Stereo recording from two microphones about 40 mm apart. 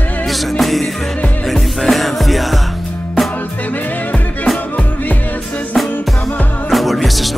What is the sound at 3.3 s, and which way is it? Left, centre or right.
Music, left.